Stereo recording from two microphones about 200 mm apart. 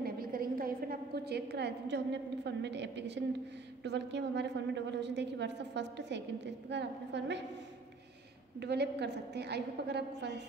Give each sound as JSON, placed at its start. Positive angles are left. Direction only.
{"t": 0.0, "sound": "a sound", "side_deg": -45}
{"t": 2.4, "sound": "a woman's voice", "side_deg": -60}
{"t": 8.5, "sound": "a woman's voice", "side_deg": -55}